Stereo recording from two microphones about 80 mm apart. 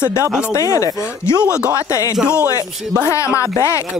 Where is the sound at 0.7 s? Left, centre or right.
Left.